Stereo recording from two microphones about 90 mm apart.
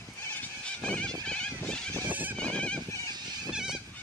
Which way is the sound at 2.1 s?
20° right (ahead or behind).